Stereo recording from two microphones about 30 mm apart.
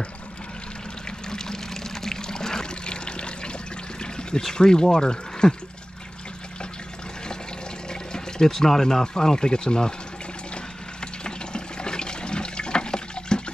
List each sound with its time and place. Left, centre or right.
1.3 s water: left
4.0 s pour: left
4.6 s speech: left
7.9 s speech: left
10.5 s water: left